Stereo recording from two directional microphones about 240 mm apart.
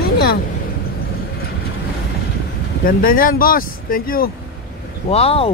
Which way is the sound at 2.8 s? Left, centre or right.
Left.